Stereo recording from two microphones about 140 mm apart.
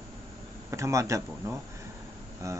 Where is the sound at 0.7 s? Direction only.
20° right (ahead or behind).